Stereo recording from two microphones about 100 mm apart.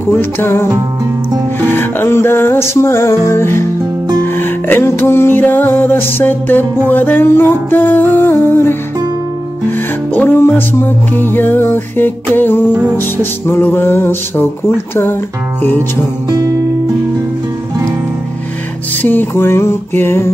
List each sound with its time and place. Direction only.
0.0 s music: 20° left (ahead or behind)
1.7 s music: 20° left (ahead or behind)
16.3 s guitar: 40° right (ahead or behind)
19.0 s music: 20° left (ahead or behind)